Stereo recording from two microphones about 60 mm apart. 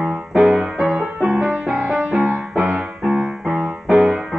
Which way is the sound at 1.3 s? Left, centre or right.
Centre.